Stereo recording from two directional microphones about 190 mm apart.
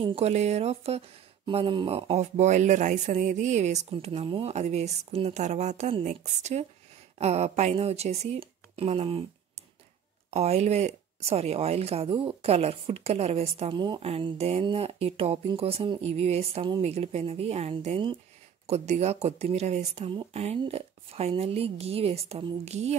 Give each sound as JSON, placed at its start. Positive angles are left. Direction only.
{"t": 0.0, "sound": "speech", "side_deg": -30}